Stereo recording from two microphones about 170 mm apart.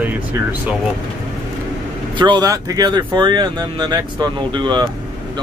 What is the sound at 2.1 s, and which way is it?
Speech, 25° right (ahead or behind).